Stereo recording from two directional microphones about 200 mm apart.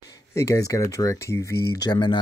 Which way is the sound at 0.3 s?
15° left (ahead or behind).